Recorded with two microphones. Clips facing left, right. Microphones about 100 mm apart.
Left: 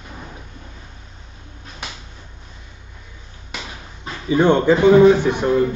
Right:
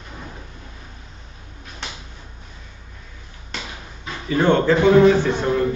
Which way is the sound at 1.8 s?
5° left (ahead or behind).